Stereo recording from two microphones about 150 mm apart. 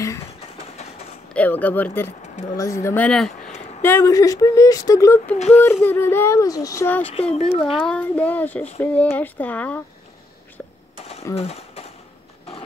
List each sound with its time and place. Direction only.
0.6 s train: 45° left (ahead or behind)
1.3 s speech: 10° left (ahead or behind)
3.4 s a sound: 50° left (ahead or behind)
3.8 s speech: 20° left (ahead or behind)
7.2 s speech: 40° left (ahead or behind)
7.7 s speech: 5° left (ahead or behind)
11.3 s speech: 45° left (ahead or behind)